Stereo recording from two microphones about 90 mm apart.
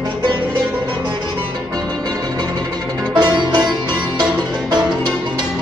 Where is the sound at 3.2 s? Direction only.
55° right (ahead or behind).